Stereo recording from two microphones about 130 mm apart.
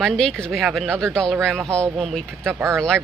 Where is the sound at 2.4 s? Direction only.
20° right (ahead or behind).